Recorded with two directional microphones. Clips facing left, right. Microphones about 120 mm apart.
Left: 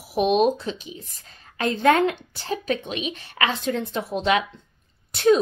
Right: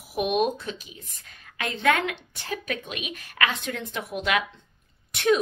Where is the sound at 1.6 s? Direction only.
35° left (ahead or behind).